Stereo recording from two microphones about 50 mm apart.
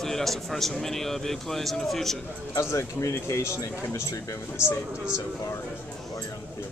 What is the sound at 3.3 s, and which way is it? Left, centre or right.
Speech, left.